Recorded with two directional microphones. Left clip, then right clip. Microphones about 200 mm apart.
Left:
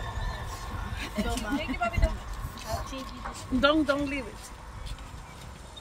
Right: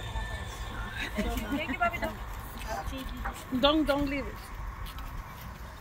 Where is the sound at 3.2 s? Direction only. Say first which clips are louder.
Left 1 dB; 50° left (ahead or behind).